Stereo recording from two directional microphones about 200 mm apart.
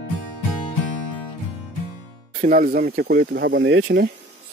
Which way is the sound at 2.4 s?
40° right (ahead or behind).